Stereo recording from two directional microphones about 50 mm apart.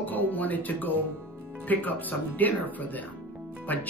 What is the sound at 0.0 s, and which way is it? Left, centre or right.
Speech, left.